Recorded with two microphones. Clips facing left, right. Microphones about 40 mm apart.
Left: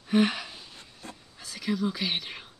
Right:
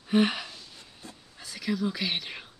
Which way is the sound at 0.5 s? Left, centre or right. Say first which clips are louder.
Left 1 dB; left.